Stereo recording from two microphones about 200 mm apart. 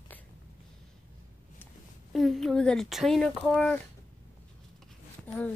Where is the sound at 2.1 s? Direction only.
Centre (ahead or behind).